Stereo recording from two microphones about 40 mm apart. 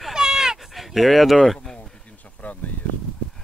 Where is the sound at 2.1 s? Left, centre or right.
Left.